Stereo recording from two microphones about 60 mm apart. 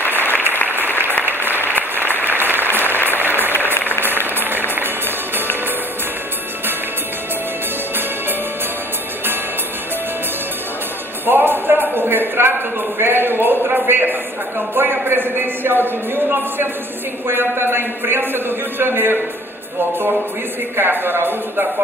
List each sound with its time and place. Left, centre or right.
1.2 s applause: right
1.8 s applause: left
2.2 s applause: right
4.4 s music: right
11.2 s a sound: right
14.8 s a man's voice: right
20.7 s a man's voice: right